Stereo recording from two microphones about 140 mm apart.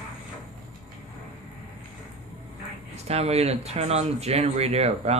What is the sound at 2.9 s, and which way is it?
Speech, 50° right (ahead or behind).